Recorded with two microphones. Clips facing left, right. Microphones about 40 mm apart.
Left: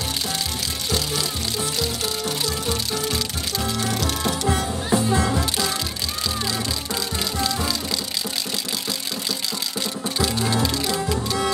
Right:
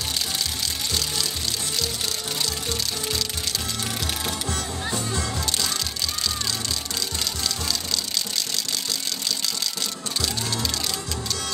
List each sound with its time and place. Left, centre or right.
3.8 s music: centre
4.9 s music: left
7.3 s music: centre
10.2 s music: centre